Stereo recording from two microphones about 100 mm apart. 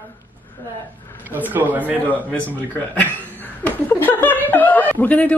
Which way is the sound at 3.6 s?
20° left (ahead or behind).